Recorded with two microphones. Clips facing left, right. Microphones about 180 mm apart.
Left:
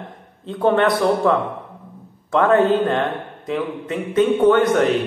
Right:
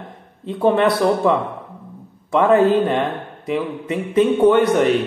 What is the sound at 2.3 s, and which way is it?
A man's voice, 5° right (ahead or behind).